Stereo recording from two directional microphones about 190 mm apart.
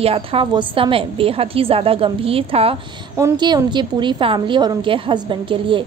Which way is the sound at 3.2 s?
20° right (ahead or behind).